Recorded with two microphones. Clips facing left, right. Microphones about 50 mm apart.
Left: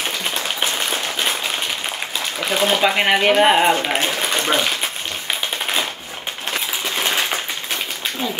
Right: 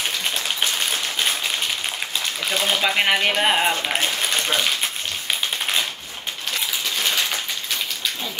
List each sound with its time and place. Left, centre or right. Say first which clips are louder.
0.0 s applause: left 2 dB; centre
2.4 s speech: left 5 dB; centre
7.0 s a sound: left 3 dB; left